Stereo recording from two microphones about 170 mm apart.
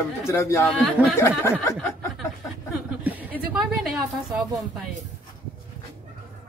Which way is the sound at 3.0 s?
10° right (ahead or behind).